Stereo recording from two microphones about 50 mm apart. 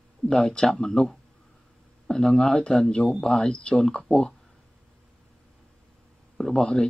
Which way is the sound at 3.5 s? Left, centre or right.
Left.